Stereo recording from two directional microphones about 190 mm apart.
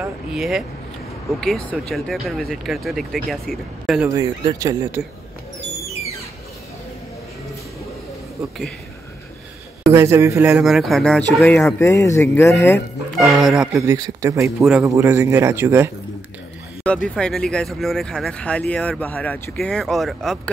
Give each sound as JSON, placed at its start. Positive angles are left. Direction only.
{"t": 0.0, "sound": "vehicle", "side_deg": -5}
{"t": 1.4, "sound": "speech", "side_deg": 0}
{"t": 4.1, "sound": "a man's voice", "side_deg": -20}
{"t": 9.8, "sound": "speech", "side_deg": -15}
{"t": 13.4, "sound": "speech", "side_deg": 0}
{"t": 13.7, "sound": "a man's voice", "side_deg": -15}
{"t": 14.6, "sound": "a man's voice", "side_deg": -5}
{"t": 16.8, "sound": "speech", "side_deg": 5}